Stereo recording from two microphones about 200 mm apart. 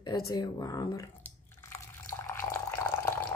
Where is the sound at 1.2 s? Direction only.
10° left (ahead or behind).